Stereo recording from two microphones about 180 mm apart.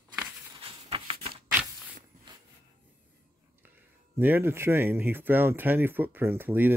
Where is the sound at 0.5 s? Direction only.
30° right (ahead or behind).